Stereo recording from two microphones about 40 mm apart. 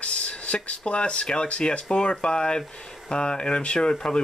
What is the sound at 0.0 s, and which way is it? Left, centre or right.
Speech, left.